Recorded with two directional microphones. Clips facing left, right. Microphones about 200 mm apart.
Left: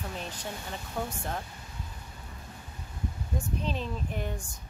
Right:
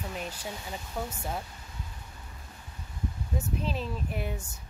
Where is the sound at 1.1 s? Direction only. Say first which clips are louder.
Even; 10° right (ahead or behind).